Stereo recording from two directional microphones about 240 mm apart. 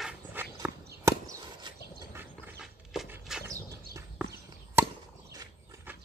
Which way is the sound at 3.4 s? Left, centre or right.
Centre.